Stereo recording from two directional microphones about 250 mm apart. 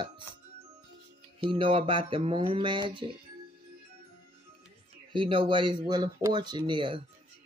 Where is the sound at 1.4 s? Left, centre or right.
Right.